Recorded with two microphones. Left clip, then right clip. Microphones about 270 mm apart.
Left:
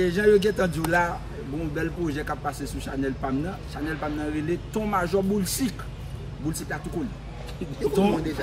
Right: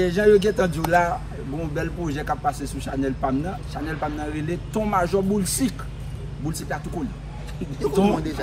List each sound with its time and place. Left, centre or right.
0.0 s speech: centre
7.8 s speech: centre